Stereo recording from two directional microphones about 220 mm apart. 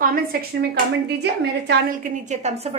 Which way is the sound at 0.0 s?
45° right (ahead or behind).